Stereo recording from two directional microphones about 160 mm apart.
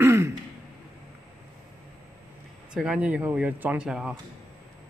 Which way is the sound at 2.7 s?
5° right (ahead or behind).